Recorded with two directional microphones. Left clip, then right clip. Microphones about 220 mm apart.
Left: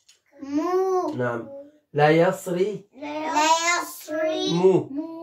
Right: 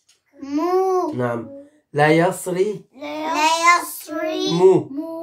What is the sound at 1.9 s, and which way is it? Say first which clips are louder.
Speech: right 3 dB; 45° right (ahead or behind).